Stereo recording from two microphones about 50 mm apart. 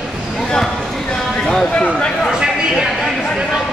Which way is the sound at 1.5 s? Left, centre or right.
Left.